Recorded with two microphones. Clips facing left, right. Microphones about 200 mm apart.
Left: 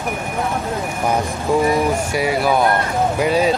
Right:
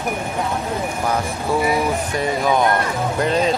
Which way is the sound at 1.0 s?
20° left (ahead or behind).